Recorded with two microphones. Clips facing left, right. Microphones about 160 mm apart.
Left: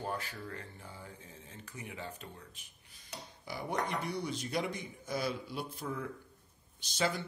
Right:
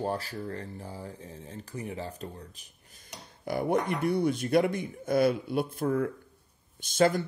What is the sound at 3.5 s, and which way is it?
Speech, 55° right (ahead or behind).